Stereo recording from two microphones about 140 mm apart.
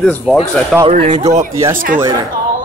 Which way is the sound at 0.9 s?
60° right (ahead or behind).